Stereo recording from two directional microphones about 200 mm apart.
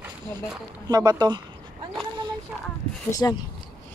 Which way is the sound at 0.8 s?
20° right (ahead or behind).